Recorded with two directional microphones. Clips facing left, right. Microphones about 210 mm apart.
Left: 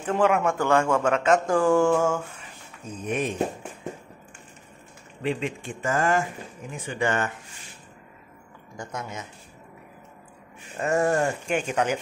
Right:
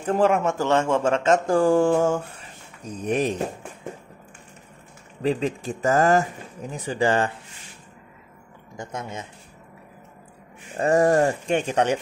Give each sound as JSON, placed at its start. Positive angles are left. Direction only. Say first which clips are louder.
{"t": 0.0, "sound": "speech", "louder": "right 2 dB", "side_deg": -35}
{"t": 5.2, "sound": "speech", "louder": "right 4 dB", "side_deg": -40}
{"t": 8.7, "sound": "speech", "louder": "right 2 dB", "side_deg": -25}
{"t": 10.8, "sound": "speech", "louder": "right 5 dB", "side_deg": -35}